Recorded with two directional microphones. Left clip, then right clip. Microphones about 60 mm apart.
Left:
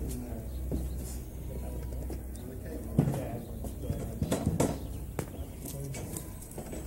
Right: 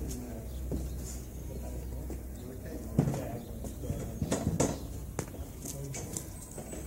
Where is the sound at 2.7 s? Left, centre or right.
Centre.